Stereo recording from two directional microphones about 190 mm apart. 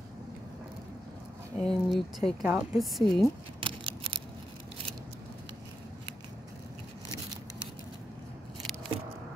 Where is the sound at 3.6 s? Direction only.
25° right (ahead or behind).